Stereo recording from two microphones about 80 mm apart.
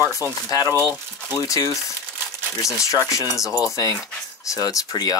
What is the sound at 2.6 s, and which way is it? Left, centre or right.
Speech, left.